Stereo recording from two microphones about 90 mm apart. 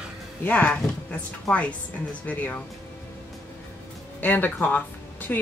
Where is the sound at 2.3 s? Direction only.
15° left (ahead or behind).